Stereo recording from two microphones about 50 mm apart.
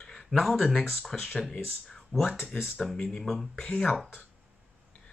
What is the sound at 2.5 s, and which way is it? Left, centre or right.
Speech, centre.